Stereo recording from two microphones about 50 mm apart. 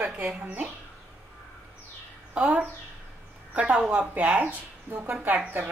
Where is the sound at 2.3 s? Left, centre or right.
Right.